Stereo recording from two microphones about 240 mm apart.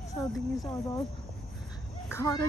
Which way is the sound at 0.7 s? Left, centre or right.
Centre.